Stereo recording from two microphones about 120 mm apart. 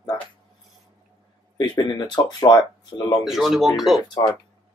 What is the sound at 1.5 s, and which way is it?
Speech, 35° left (ahead or behind).